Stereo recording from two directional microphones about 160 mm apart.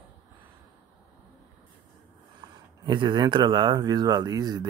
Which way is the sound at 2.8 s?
25° right (ahead or behind).